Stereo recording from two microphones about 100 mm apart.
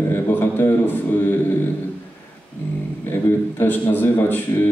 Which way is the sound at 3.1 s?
25° left (ahead or behind).